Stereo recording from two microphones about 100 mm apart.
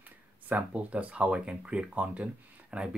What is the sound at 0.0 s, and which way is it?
Speech, 15° right (ahead or behind).